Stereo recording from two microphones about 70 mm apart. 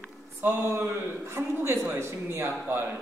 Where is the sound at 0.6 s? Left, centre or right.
Right.